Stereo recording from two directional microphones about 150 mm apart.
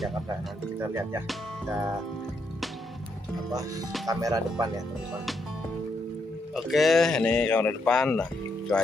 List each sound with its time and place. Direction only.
0.7 s speech: 15° right (ahead or behind)
1.2 s speech: 5° right (ahead or behind)
4.1 s speech: 25° right (ahead or behind)
6.5 s speech: centre (ahead or behind)